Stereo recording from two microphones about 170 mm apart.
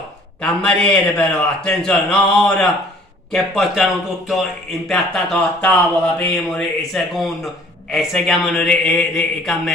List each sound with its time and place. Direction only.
0.4 s speech: 5° left (ahead or behind)
4.8 s speech: centre (ahead or behind)